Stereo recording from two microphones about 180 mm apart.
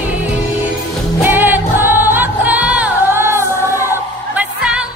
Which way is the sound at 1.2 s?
10° right (ahead or behind).